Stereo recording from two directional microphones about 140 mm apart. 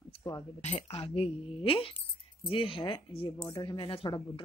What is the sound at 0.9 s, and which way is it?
Speech, 40° left (ahead or behind).